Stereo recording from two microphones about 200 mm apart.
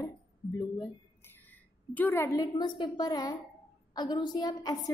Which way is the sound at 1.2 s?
10° left (ahead or behind).